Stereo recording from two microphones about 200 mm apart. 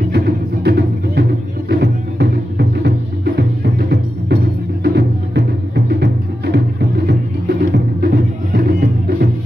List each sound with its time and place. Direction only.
0.7 s music: 55° right (ahead or behind)